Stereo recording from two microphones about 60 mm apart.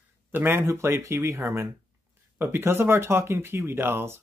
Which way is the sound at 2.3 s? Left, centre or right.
Right.